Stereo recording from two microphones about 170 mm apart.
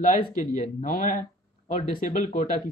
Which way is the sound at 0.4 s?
50° left (ahead or behind).